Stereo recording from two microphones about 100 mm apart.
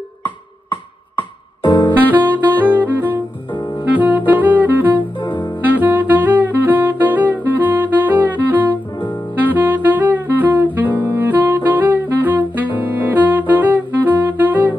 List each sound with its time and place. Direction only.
0.2 s music: 55° left (ahead or behind)
2.0 s saxophone: 20° right (ahead or behind)
5.2 s saxophone: 50° left (ahead or behind)
5.6 s music: 15° right (ahead or behind)
11.1 s saxophone: 20° right (ahead or behind)